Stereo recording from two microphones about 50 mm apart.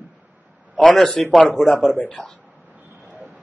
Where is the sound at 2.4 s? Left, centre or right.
Right.